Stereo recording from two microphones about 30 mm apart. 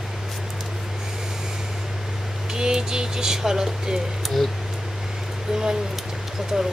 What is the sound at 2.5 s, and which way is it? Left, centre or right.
Speech, right.